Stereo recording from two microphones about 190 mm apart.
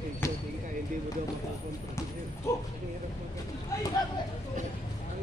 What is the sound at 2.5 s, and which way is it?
Speech, 15° left (ahead or behind).